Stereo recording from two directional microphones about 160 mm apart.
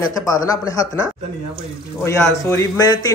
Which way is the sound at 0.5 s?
20° left (ahead or behind).